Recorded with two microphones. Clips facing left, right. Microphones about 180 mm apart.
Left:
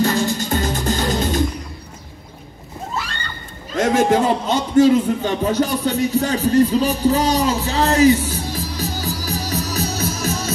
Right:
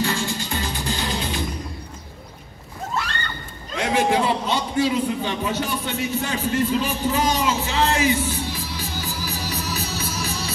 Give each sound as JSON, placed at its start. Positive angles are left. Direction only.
{"t": 0.0, "sound": "music", "side_deg": 40}
{"t": 2.9, "sound": "a sound", "side_deg": 0}
{"t": 3.7, "sound": "a man's voice", "side_deg": 45}